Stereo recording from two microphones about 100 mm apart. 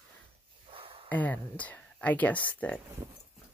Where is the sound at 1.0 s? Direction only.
15° left (ahead or behind).